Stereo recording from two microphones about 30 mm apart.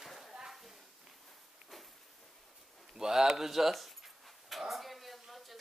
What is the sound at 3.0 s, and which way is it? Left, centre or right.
Speech, centre.